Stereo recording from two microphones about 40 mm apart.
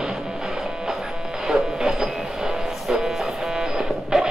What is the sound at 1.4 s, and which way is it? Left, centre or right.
Train, centre.